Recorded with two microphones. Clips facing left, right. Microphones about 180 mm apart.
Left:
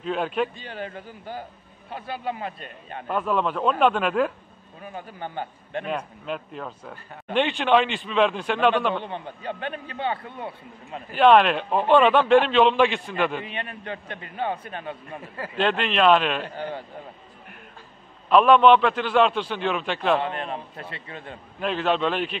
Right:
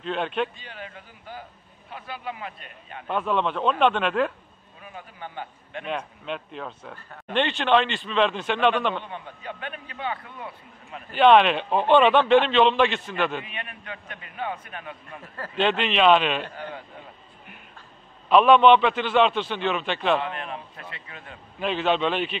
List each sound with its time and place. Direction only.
0.0 s a man's voice: 5° left (ahead or behind)
0.6 s a man's voice: 35° left (ahead or behind)
3.1 s a man's voice: 5° left (ahead or behind)
4.8 s a man's voice: 35° left (ahead or behind)
5.9 s a man's voice: 5° left (ahead or behind)
9.0 s a man's voice: 30° left (ahead or behind)
11.1 s a man's voice: 5° left (ahead or behind)
13.5 s a man's voice: 30° left (ahead or behind)
15.3 s a man's voice: 5° left (ahead or behind)
16.5 s a man's voice: 30° left (ahead or behind)
18.3 s a man's voice: centre (ahead or behind)
20.2 s a man's voice: 30° left (ahead or behind)
21.5 s a man's voice: centre (ahead or behind)